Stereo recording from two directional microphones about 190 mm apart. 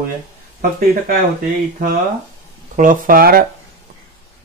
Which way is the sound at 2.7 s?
45° right (ahead or behind).